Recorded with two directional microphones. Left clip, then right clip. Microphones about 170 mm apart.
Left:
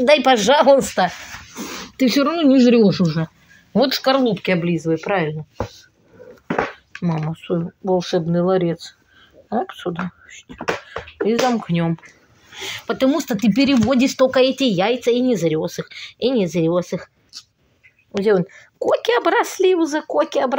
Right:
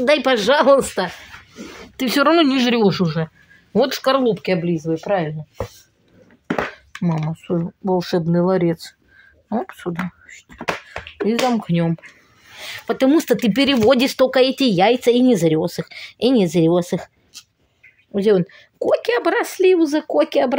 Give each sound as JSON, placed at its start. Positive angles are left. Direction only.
{"t": 0.0, "sound": "speech", "side_deg": -20}
{"t": 2.0, "sound": "speech", "side_deg": -45}
{"t": 2.3, "sound": "speech", "side_deg": -65}
{"t": 3.7, "sound": "speech", "side_deg": -30}
{"t": 4.5, "sound": "speech", "side_deg": -15}
{"t": 7.2, "sound": "speech", "side_deg": -15}
{"t": 7.9, "sound": "a woman's voice", "side_deg": -30}
{"t": 13.1, "sound": "speech", "side_deg": -55}
{"t": 18.1, "sound": "speech", "side_deg": -35}